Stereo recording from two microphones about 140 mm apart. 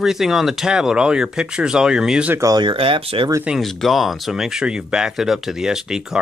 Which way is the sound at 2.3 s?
25° right (ahead or behind).